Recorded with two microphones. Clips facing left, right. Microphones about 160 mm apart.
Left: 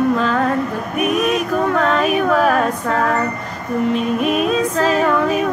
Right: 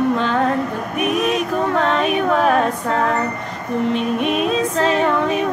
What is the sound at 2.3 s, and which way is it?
Music, 30° right (ahead or behind).